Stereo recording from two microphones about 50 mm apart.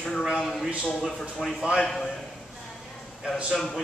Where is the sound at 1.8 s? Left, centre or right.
Centre.